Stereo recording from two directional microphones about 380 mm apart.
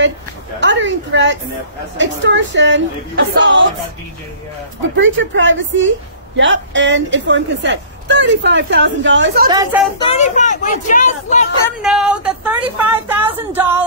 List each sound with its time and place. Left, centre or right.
0.6 s a woman's voice: right
4.9 s speech: right
9.5 s speech: centre
9.9 s speech: centre
11.6 s speech: centre